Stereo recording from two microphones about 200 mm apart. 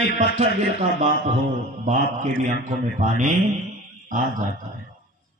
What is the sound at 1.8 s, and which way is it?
A man's voice, 40° right (ahead or behind).